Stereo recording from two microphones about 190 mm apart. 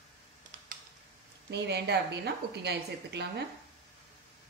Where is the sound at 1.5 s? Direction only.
65° right (ahead or behind).